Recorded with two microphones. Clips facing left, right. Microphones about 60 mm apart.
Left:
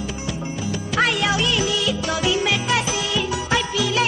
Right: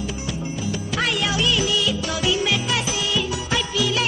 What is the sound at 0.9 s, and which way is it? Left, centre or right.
Music, left.